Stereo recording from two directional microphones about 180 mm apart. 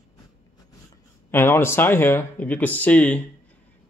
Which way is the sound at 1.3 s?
10° left (ahead or behind).